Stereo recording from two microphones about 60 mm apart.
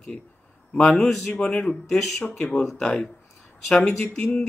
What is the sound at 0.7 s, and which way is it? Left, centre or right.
Speech, centre.